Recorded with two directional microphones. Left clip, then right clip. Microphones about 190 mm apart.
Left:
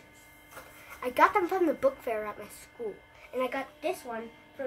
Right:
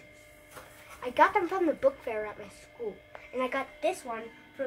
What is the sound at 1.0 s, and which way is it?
A woman's voice, 25° left (ahead or behind).